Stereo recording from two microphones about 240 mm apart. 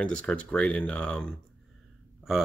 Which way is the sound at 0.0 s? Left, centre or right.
Centre.